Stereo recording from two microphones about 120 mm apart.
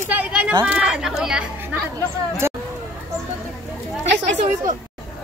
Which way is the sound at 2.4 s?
20° right (ahead or behind).